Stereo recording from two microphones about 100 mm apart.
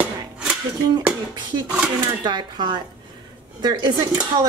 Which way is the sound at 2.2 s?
45° right (ahead or behind).